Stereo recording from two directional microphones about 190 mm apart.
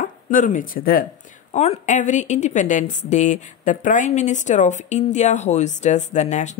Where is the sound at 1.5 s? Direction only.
35° left (ahead or behind).